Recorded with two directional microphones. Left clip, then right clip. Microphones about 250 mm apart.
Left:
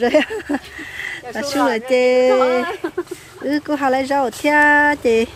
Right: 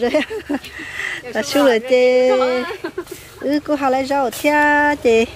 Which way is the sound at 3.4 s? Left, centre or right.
Centre.